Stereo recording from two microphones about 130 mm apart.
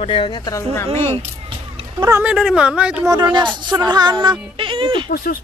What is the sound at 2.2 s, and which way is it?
Speech, 5° right (ahead or behind).